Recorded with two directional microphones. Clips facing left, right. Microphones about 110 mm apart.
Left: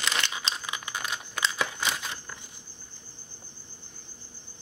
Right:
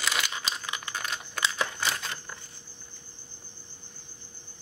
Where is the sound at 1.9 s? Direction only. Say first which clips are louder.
Even; 15° left (ahead or behind).